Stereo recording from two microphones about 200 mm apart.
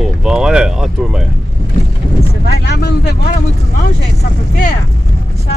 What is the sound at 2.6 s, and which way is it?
Speech, 55° left (ahead or behind).